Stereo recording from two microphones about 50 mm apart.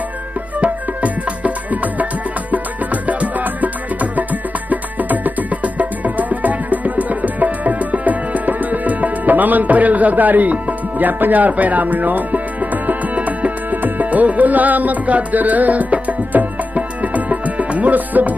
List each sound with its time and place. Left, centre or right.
0.6 s music: right